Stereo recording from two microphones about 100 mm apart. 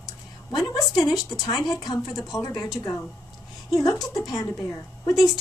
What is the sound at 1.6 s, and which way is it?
A woman's voice, 40° left (ahead or behind).